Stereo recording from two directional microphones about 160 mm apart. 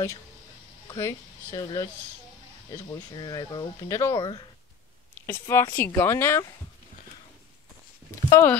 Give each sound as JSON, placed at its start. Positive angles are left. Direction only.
{"t": 0.9, "sound": "a woman's voice", "side_deg": 20}
{"t": 8.3, "sound": "speech", "side_deg": 15}